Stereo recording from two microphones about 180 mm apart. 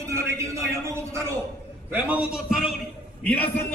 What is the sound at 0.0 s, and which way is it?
A man's voice, 15° right (ahead or behind).